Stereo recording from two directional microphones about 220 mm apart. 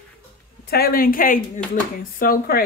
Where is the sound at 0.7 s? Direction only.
40° left (ahead or behind).